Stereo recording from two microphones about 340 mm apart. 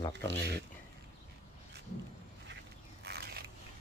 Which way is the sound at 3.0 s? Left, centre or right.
Right.